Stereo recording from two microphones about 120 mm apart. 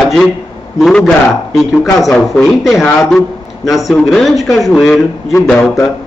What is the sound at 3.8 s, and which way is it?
A man's voice, centre (ahead or behind).